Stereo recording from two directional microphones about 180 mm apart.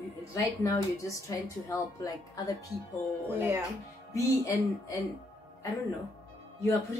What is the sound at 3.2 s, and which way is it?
Speech, 10° right (ahead or behind).